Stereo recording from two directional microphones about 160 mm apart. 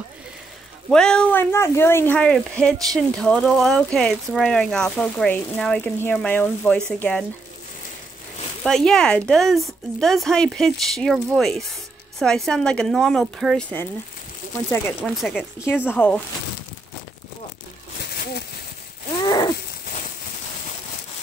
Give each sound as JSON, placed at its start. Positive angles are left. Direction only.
{"t": 0.8, "sound": "speech", "side_deg": 5}
{"t": 8.6, "sound": "speech", "side_deg": 5}
{"t": 15.1, "sound": "speech", "side_deg": 5}
{"t": 19.2, "sound": "wheeze", "side_deg": 25}